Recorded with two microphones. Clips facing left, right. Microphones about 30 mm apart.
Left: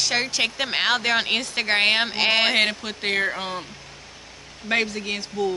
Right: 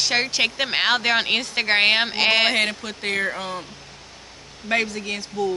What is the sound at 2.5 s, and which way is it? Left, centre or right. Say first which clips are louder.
Speech: left 1 dB; centre.